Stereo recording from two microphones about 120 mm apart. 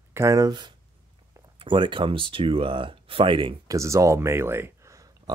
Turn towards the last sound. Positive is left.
turn(degrees=-30)  # may be behind; listen again after turning